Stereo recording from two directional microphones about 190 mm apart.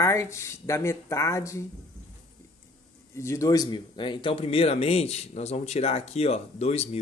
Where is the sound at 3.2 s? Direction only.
15° left (ahead or behind).